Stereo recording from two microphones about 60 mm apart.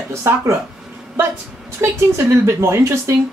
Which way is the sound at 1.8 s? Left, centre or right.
Right.